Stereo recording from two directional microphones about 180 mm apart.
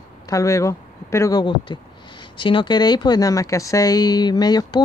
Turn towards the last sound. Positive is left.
turn(degrees=20)  # may be behind; listen again after turning